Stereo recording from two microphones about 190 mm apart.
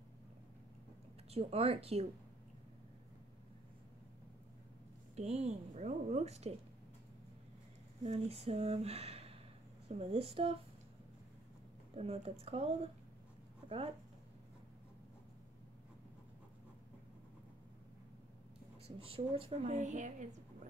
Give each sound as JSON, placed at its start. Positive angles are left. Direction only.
{"t": 1.3, "sound": "a woman's voice", "side_deg": -30}
{"t": 5.1, "sound": "a woman's voice", "side_deg": -35}
{"t": 8.0, "sound": "a woman's voice", "side_deg": -35}
{"t": 11.9, "sound": "a woman's voice", "side_deg": -35}
{"t": 18.9, "sound": "a woman's voice", "side_deg": -30}